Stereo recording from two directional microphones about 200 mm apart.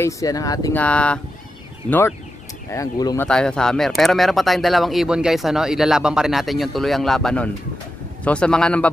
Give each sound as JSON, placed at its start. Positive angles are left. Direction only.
{"t": 0.0, "sound": "speech", "side_deg": 15}
{"t": 0.8, "sound": "speech", "side_deg": 5}
{"t": 3.3, "sound": "speech", "side_deg": 5}